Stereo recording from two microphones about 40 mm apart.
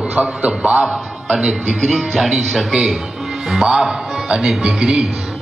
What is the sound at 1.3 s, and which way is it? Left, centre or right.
A woman's voice, centre.